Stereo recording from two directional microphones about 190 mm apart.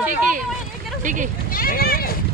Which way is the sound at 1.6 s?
50° left (ahead or behind).